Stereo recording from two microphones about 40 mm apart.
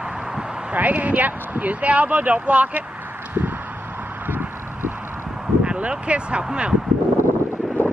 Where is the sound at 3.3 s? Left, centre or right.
Right.